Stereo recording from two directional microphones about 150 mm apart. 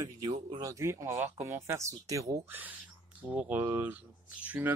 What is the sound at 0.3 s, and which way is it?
Speech, 30° right (ahead or behind).